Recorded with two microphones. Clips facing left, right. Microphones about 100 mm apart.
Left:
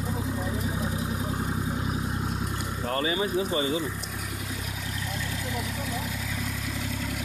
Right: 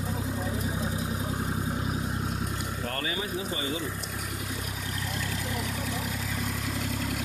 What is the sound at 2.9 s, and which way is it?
Speech, 20° left (ahead or behind).